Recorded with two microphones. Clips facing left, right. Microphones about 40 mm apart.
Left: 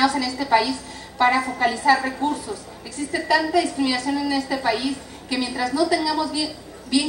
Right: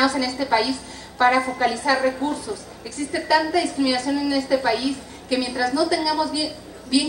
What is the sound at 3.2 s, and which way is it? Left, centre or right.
Speech, centre.